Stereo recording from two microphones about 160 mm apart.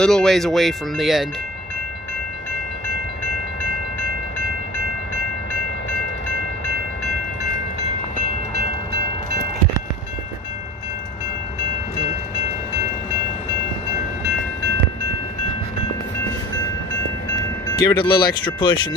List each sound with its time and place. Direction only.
0.0 s speech: 5° left (ahead or behind)
17.7 s speech: 25° left (ahead or behind)